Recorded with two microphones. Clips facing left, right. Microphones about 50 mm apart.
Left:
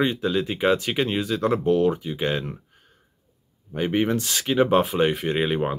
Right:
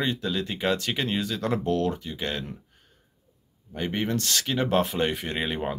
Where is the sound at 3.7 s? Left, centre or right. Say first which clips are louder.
Left 5 dB; centre.